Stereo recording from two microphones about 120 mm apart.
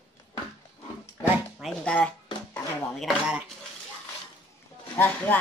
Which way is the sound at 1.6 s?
5° left (ahead or behind).